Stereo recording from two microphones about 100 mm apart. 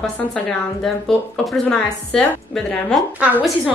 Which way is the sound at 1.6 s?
10° left (ahead or behind).